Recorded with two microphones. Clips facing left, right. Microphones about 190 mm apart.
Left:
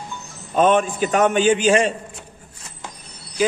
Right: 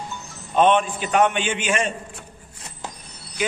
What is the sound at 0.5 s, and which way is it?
A man's voice, 45° left (ahead or behind).